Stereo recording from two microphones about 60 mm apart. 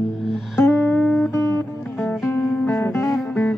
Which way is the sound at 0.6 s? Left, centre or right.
Left.